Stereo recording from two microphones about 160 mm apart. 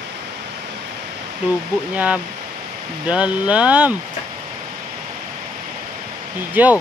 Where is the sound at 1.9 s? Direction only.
10° right (ahead or behind).